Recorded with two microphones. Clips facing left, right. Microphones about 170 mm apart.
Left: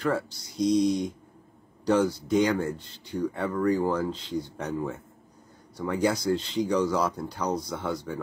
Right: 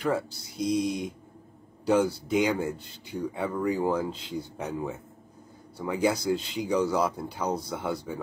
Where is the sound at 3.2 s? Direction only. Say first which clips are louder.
Left 2 dB; 10° right (ahead or behind).